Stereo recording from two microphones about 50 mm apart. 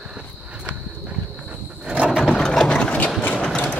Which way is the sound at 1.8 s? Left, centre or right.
Centre.